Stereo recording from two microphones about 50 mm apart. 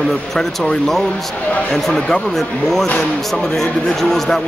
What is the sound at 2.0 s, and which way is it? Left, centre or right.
Speech, left.